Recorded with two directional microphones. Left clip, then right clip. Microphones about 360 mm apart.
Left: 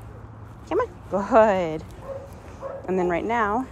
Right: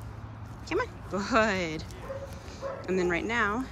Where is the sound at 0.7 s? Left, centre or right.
Centre.